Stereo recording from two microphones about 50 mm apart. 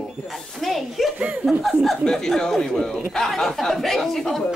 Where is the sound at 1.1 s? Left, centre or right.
Right.